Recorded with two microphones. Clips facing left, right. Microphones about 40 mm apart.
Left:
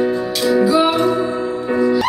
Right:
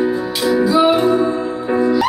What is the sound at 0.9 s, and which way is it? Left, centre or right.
Music, centre.